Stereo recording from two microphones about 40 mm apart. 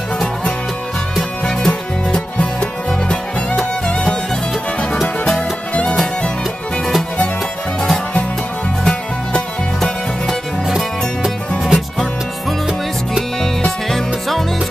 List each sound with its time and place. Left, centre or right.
1.7 s music: left
8.8 s music: centre
11.6 s music: centre
13.7 s music: centre